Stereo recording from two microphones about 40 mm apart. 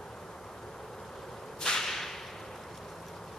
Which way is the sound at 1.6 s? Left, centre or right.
Centre.